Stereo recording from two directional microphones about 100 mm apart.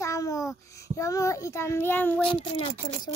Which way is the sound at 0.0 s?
35° left (ahead or behind).